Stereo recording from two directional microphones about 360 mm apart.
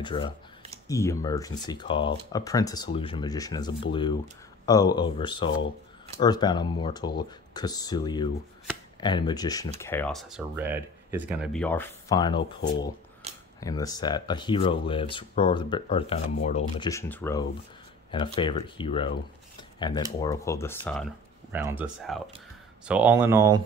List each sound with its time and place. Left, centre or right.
0.0 s speech: centre
12.4 s speech: left
13.2 s cutlery: centre
13.6 s speech: centre